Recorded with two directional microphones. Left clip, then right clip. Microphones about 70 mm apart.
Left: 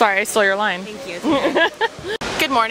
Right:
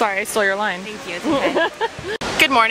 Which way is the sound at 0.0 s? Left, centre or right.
Left.